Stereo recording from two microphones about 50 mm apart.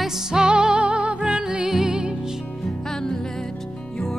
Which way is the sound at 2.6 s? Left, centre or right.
Centre.